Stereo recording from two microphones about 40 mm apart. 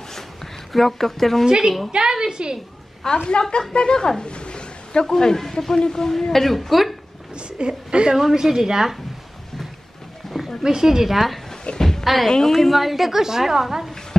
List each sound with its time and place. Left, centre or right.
0.1 s a sound: centre
1.4 s a woman's voice: centre
3.3 s a woman's voice: left
4.2 s a sound: left
5.0 s a man's voice: centre
7.3 s a woman's voice: right
8.2 s a woman's voice: centre
10.2 s a sound: centre
10.6 s a woman's voice: centre
11.8 s a sound: centre
12.3 s a man's voice: centre
12.5 s a woman's voice: centre